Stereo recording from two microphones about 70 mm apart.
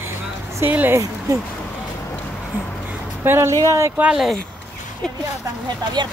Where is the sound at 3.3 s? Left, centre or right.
Right.